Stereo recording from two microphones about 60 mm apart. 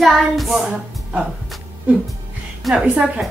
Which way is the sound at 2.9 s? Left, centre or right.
Centre.